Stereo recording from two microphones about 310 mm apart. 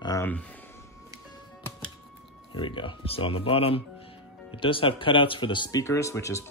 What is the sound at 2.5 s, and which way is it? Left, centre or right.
Speech, centre.